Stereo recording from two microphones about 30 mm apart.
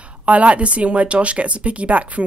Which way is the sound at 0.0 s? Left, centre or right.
Right.